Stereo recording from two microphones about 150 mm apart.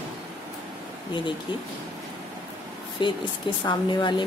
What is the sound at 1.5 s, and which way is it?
Speech, 30° left (ahead or behind).